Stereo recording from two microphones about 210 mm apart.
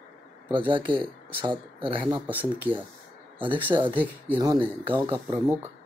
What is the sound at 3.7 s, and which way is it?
Speech, 25° right (ahead or behind).